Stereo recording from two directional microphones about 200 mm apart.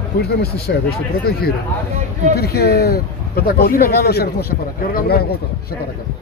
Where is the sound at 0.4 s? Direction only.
50° left (ahead or behind).